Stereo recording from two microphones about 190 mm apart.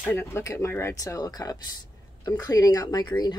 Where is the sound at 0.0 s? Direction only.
10° left (ahead or behind).